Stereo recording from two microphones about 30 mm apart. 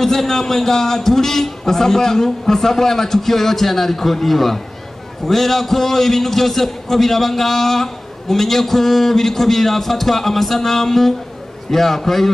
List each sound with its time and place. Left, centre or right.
0.0 s a man's voice: centre